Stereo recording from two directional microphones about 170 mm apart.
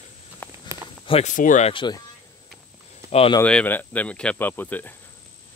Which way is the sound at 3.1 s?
35° left (ahead or behind).